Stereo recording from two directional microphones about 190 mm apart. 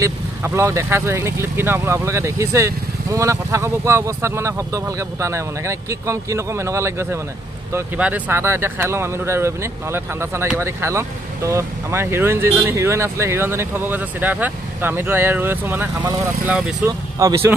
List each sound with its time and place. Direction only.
0.0 s speech: 15° right (ahead or behind)
17.2 s speech: 15° right (ahead or behind)